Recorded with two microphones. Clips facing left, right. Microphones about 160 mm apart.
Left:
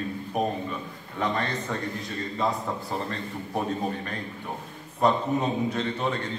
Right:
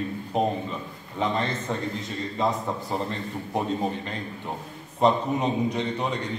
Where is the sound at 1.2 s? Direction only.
20° right (ahead or behind).